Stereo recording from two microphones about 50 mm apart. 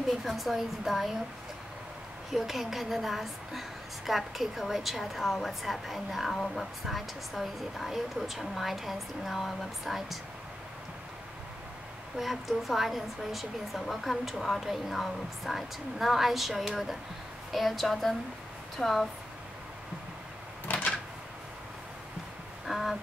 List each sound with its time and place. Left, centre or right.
0.2 s a woman's voice: centre
2.3 s a woman's voice: centre
6.3 s a woman's voice: centre
6.6 s a woman's voice: centre
12.2 s a woman's voice: centre
20.6 s a sound: left
22.7 s a sound: centre